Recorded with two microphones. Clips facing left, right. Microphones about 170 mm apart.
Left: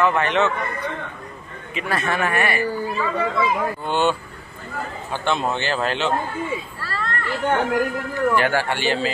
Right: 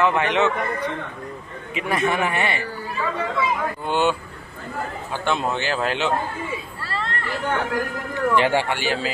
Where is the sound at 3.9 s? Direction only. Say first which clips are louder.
Right 1 dB; 10° right (ahead or behind).